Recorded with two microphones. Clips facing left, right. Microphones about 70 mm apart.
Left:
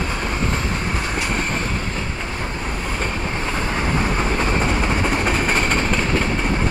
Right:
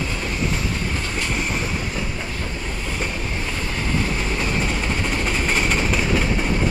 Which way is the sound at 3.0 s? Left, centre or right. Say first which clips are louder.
Left 3 dB; left.